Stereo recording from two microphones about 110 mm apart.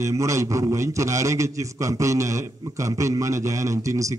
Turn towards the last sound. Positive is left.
turn(degrees=-30)  # may be behind; listen again after turning